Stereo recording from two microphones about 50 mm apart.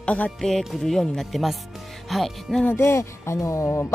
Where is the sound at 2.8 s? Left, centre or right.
Left.